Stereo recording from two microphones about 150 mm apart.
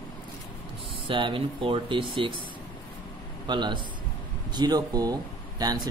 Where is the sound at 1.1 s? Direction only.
35° right (ahead or behind).